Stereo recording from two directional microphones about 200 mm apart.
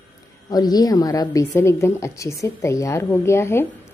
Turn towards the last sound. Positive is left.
turn(degrees=15)  # may be behind; listen again after turning